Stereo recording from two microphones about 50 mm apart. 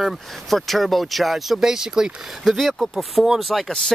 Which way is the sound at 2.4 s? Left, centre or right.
Centre.